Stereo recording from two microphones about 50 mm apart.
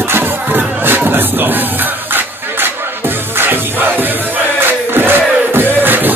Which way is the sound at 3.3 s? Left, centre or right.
Right.